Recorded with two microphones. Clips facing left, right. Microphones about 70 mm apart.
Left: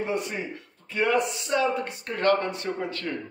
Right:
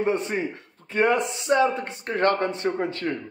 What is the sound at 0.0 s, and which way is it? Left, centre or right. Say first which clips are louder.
A man's voice: right 5 dB; right.